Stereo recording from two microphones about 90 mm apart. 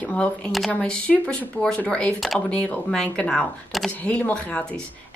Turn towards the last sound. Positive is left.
turn(degrees=15)  # may be behind; listen again after turning